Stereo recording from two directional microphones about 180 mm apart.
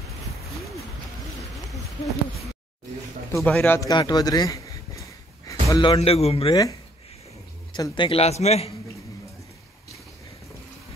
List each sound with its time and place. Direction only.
3.3 s speech: 10° left (ahead or behind); by 6.6 s 30° left (ahead or behind)
7.7 s a man's voice: 25° left (ahead or behind)